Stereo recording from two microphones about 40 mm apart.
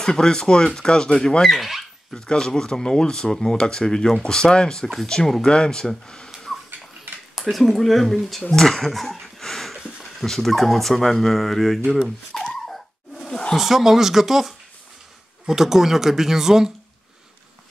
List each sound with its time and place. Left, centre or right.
0.0 s speech: centre
1.6 s speech: centre
2.1 s speech: centre
7.3 s speech: centre
12.4 s a sound: centre
13.6 s speech: centre